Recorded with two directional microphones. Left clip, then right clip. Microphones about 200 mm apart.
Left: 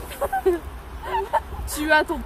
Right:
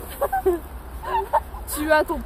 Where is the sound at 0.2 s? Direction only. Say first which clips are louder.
Right 2 dB; 20° left (ahead or behind).